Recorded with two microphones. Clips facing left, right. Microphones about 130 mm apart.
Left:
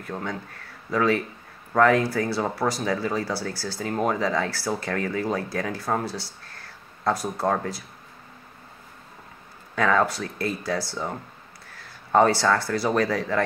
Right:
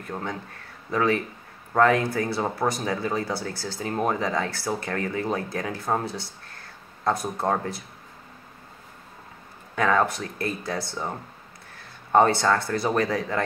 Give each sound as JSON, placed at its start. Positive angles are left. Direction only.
{"t": 0.0, "sound": "speech", "side_deg": -25}
{"t": 1.7, "sound": "speech", "side_deg": -20}
{"t": 9.8, "sound": "speech", "side_deg": -20}